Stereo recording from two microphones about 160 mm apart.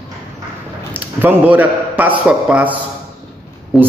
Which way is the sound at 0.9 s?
10° right (ahead or behind).